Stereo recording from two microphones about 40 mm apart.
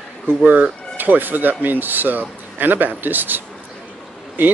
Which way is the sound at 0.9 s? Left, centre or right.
Right.